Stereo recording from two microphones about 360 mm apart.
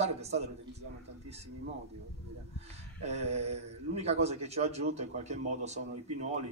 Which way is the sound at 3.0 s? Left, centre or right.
Centre.